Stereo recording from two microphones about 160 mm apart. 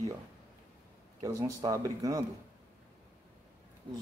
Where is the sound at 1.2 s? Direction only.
20° right (ahead or behind).